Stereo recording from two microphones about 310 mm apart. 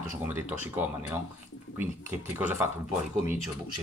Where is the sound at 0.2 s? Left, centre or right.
Centre.